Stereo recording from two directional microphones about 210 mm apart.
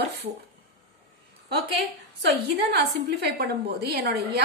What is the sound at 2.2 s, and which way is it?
A woman's voice, 50° right (ahead or behind).